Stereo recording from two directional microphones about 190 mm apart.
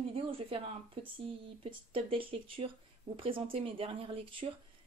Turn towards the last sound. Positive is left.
turn(degrees=-30)  # may be behind; listen again after turning